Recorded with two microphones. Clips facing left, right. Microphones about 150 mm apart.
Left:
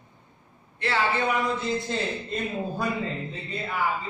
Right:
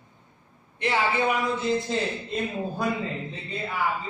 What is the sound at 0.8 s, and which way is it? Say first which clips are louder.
Speech: right 1 dB; 15° right (ahead or behind).